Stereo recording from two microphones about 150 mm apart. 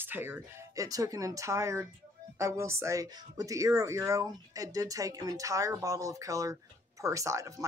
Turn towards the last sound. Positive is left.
turn(degrees=-20)  # may be behind; listen again after turning